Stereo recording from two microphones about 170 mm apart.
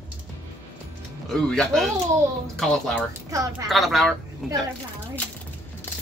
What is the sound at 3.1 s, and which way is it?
Speech, 15° right (ahead or behind).